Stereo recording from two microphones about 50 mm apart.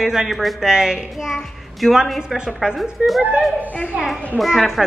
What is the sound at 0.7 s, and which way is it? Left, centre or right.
A woman's voice, centre.